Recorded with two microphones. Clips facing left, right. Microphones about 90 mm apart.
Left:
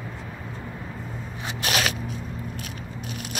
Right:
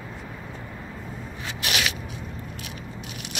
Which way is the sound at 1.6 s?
40° left (ahead or behind).